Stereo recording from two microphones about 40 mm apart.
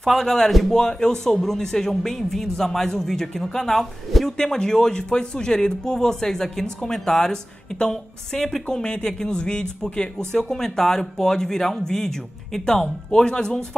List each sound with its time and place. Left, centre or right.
0.0 s speech: centre
0.7 s speech: centre
4.4 s speech: centre
8.6 s speech: left
10.1 s speech: centre